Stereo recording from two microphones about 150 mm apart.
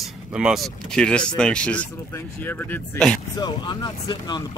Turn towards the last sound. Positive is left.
turn(degrees=30)  # may be behind; listen again after turning